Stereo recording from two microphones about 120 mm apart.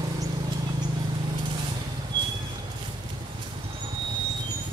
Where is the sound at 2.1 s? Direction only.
40° right (ahead or behind).